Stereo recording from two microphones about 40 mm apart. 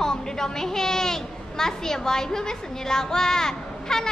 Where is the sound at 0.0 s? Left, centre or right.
Centre.